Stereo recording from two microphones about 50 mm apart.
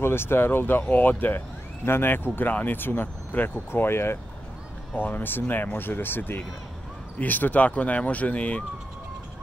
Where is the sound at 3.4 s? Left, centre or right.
Left.